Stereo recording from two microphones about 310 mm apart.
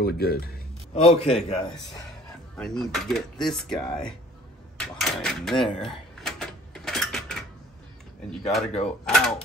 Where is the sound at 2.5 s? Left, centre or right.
Centre.